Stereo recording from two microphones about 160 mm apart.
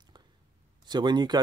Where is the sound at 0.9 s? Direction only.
25° right (ahead or behind).